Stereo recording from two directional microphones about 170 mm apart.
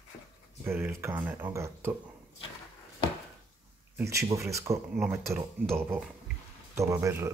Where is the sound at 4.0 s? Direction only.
15° right (ahead or behind).